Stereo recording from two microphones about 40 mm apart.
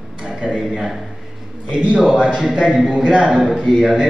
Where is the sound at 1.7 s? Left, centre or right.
Right.